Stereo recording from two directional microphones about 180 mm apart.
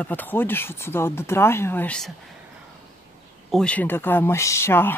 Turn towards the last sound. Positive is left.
turn(degrees=15)  # may be behind; listen again after turning